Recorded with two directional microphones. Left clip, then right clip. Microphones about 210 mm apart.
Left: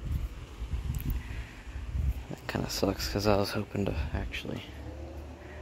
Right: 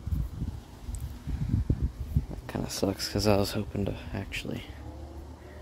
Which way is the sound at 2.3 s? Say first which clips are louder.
Left 3 dB; 5° right (ahead or behind).